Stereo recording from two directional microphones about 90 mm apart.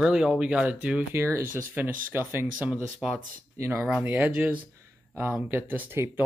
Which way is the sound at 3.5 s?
30° right (ahead or behind).